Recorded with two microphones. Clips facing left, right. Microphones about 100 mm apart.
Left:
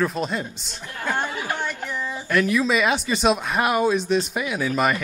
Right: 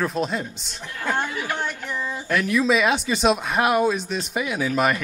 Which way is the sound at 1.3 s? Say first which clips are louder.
Even; 20° left (ahead or behind).